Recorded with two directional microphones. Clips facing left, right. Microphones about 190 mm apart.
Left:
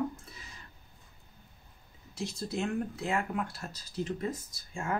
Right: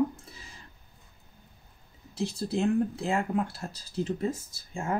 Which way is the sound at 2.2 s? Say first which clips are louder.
Right 5 dB; 30° right (ahead or behind).